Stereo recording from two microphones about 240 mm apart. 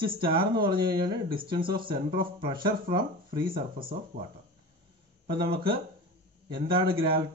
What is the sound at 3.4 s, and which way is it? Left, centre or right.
Speech, right.